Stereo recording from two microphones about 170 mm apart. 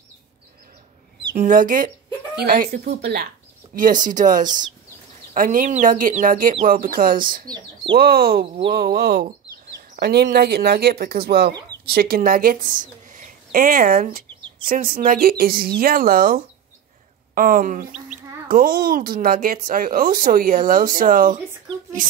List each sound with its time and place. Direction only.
1.3 s speech: 55° right (ahead or behind)
2.3 s speech: 60° right (ahead or behind)
3.7 s speech: 50° right (ahead or behind)
7.4 s speech: 25° right (ahead or behind)
8.0 s speech: 60° right (ahead or behind)